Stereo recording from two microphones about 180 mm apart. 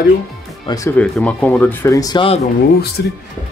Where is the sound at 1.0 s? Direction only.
5° left (ahead or behind); by 2.3 s 25° left (ahead or behind).